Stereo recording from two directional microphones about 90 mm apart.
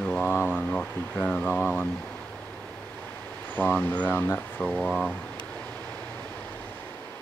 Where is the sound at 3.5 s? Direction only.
20° left (ahead or behind).